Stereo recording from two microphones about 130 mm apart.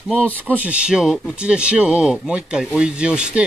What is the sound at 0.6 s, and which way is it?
Speech, 10° right (ahead or behind).